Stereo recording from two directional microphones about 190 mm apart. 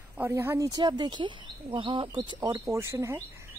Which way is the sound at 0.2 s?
10° right (ahead or behind).